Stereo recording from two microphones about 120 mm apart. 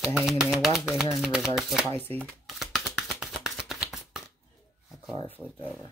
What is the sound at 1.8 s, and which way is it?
Speech, 15° left (ahead or behind).